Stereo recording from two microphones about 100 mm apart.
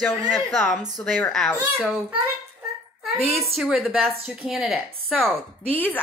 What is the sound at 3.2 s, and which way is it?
A woman's voice, centre (ahead or behind).